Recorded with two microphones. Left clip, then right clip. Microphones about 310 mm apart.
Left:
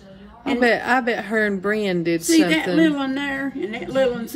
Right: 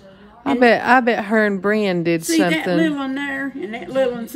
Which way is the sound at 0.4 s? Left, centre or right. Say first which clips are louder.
Right 4 dB; right.